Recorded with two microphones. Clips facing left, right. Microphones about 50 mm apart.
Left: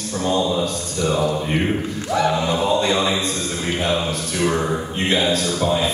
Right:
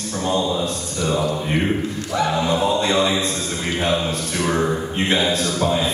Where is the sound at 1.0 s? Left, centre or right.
Centre.